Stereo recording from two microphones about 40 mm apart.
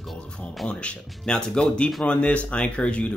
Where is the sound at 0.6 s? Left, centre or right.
Left.